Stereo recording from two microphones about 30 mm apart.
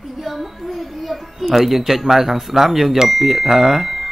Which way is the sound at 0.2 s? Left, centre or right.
Centre.